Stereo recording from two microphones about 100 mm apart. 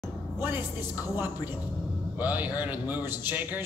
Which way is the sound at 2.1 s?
15° right (ahead or behind).